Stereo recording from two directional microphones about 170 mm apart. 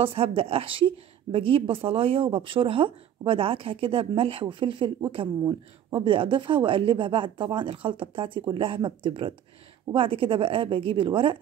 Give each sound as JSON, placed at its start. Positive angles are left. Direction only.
{"t": 0.0, "sound": "a woman's voice", "side_deg": -35}